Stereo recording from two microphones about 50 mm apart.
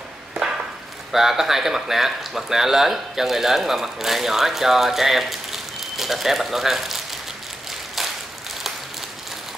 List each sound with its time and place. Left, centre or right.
1.1 s speech: centre